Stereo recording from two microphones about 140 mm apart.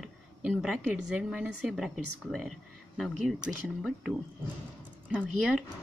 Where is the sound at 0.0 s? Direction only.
5° right (ahead or behind).